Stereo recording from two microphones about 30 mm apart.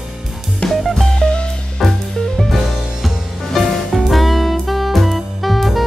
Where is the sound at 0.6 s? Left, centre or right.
Left.